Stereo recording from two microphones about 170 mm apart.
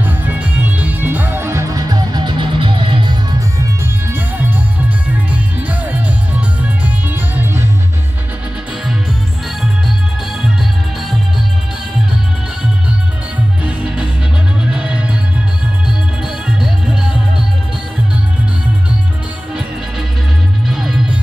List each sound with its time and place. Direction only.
0.0 s music: 10° right (ahead or behind)
5.6 s music: 10° right (ahead or behind)
14.6 s music: 5° right (ahead or behind)
20.6 s music: centre (ahead or behind)